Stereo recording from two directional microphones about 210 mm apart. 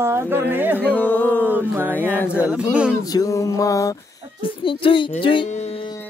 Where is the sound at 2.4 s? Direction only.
5° right (ahead or behind).